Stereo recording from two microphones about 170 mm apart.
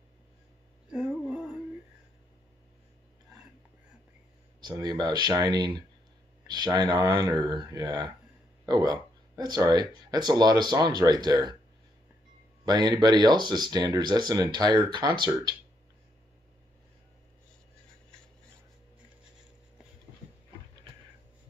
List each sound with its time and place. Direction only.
0.8 s a sound: 5° right (ahead or behind)
4.6 s speech: 25° right (ahead or behind)
12.6 s speech: 25° right (ahead or behind)